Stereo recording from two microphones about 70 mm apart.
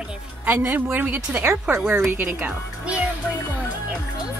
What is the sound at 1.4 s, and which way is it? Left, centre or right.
Speech, right.